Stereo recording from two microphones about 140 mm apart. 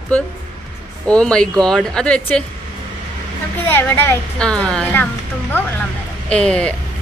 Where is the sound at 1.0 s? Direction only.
5° left (ahead or behind).